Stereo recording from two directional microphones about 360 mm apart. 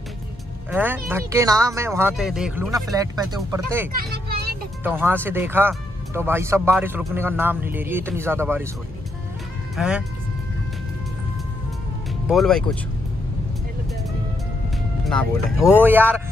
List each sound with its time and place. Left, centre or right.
0.7 s speech: centre
4.0 s speech: right
4.8 s speech: centre
9.8 s speech: centre
12.3 s speech: centre
15.0 s speech: centre